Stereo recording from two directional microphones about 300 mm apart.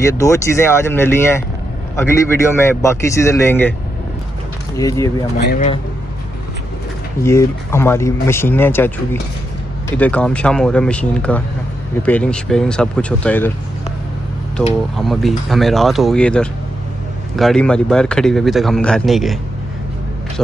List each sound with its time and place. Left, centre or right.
0.0 s speech: centre
4.7 s speech: centre
5.5 s a man's voice: left
7.2 s speech: centre
15.0 s speech: centre